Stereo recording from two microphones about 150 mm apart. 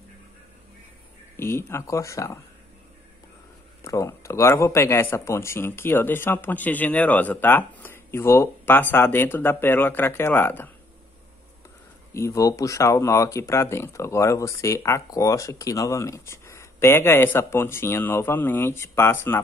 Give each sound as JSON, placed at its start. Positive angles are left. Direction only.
{"t": 1.3, "sound": "speech", "side_deg": 15}
{"t": 3.8, "sound": "speech", "side_deg": 20}
{"t": 12.1, "sound": "speech", "side_deg": 20}